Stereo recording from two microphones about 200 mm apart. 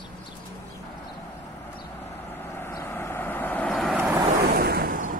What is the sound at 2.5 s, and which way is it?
Vehicle, 10° left (ahead or behind).